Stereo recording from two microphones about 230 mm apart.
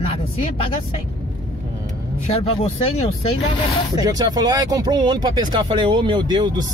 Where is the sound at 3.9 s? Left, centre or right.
Centre.